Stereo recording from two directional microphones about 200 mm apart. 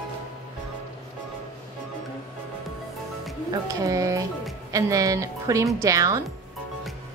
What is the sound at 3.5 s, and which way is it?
Speech, 15° right (ahead or behind).